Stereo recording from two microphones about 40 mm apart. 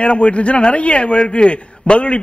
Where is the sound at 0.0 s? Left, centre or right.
Left.